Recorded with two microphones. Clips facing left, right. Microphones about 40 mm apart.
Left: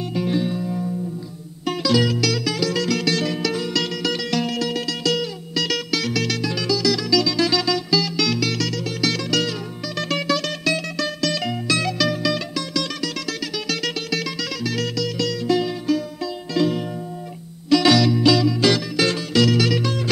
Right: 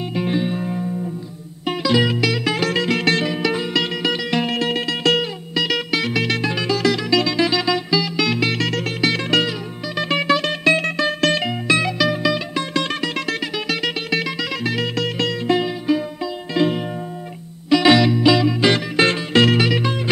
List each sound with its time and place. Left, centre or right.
0.1 s music: right
5.5 s music: right
11.4 s music: right
12.7 s music: right
13.7 s music: right